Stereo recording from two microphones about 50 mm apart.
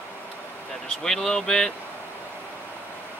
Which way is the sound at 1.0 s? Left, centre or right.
Centre.